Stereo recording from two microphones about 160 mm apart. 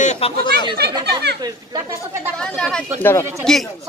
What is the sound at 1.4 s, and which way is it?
Speech, 20° right (ahead or behind).